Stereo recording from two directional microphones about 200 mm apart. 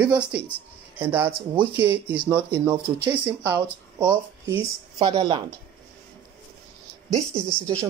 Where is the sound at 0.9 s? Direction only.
10° right (ahead or behind).